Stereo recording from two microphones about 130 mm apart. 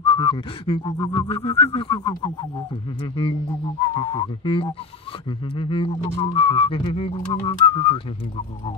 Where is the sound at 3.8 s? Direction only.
35° left (ahead or behind).